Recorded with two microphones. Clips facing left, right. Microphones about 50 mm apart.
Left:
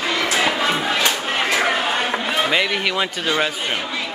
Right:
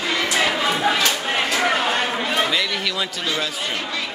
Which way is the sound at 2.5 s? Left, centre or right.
Left.